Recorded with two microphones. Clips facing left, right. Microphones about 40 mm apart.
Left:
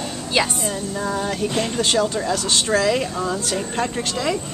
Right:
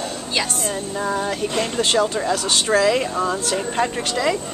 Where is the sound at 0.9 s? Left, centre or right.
Centre.